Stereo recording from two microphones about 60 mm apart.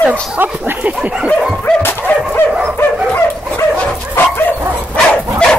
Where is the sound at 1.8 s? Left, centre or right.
Left.